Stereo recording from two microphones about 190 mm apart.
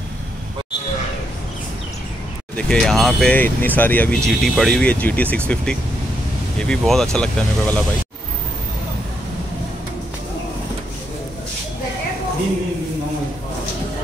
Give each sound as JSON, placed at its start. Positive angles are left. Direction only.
{"t": 2.5, "sound": "speech", "side_deg": 5}
{"t": 6.6, "sound": "speech", "side_deg": 5}